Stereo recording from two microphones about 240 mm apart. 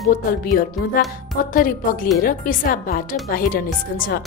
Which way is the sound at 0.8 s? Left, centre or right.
Left.